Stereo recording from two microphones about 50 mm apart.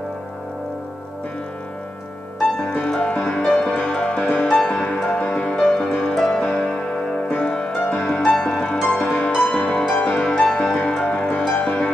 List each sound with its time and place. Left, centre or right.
2.9 s music: centre
6.6 s music: centre
7.3 s music: centre